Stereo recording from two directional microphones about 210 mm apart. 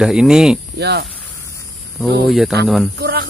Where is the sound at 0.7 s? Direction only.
55° right (ahead or behind).